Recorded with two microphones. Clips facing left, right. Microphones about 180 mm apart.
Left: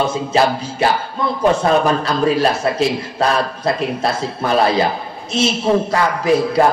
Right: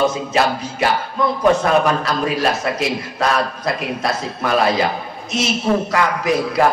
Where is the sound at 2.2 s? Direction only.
30° left (ahead or behind).